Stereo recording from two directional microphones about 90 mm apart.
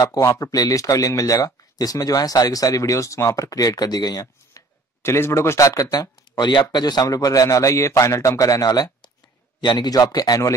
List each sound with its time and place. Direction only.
0.2 s speech: 35° left (ahead or behind)
5.0 s speech: 30° left (ahead or behind)